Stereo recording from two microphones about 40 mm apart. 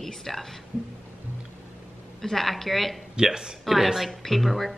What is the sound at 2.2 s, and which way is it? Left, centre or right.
Speech, centre.